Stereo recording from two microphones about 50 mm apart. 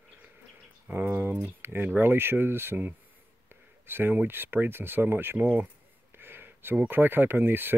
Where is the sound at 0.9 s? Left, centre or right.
Right.